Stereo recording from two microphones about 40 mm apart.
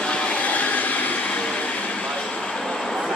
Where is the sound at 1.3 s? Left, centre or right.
Left; by 3.1 s centre.